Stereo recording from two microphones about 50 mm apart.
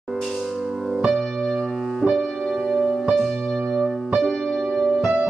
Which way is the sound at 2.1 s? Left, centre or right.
Centre.